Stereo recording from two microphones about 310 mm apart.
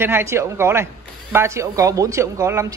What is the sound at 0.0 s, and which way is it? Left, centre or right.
Speech, centre.